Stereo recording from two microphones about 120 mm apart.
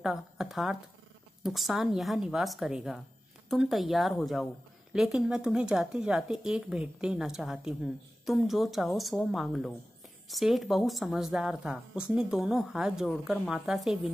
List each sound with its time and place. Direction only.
0.0 s speech: 5° right (ahead or behind)